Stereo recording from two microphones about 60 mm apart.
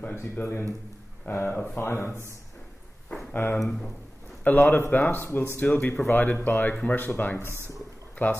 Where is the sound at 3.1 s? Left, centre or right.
Centre.